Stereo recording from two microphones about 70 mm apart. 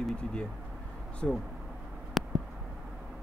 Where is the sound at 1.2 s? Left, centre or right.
Centre.